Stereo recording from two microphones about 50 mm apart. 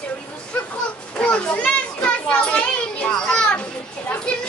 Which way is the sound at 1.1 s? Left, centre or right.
Left.